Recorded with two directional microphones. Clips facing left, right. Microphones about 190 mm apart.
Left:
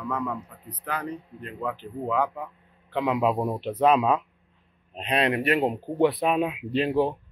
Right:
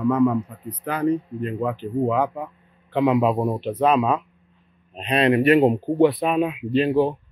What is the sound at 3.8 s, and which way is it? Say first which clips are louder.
Speech: right 1 dB; 10° left (ahead or behind).